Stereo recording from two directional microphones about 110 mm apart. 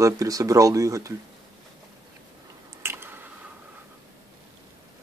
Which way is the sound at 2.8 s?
20° right (ahead or behind).